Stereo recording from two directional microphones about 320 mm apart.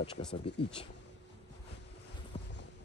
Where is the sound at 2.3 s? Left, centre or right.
Centre.